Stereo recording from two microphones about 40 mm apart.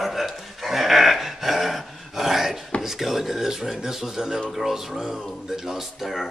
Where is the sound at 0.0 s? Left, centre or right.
Centre.